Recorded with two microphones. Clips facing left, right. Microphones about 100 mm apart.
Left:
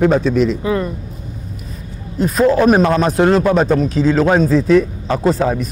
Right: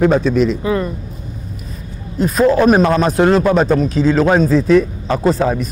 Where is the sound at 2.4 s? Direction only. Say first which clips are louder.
Even; 35° right (ahead or behind).